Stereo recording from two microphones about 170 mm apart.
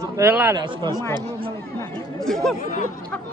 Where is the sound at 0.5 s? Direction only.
25° right (ahead or behind).